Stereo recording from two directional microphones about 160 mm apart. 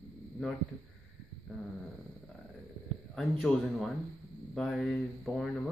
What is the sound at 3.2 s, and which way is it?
Speech, centre (ahead or behind).